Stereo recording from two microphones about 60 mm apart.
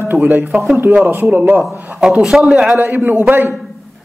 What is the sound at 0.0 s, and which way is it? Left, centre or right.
A man's voice, right.